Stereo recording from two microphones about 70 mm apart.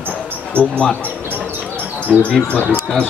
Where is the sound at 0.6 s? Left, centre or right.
Left.